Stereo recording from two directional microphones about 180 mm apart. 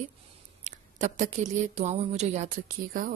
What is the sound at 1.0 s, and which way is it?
A woman's voice, 45° right (ahead or behind).